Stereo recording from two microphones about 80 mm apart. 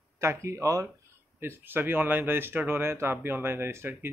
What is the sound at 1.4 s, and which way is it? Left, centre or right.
Speech, right.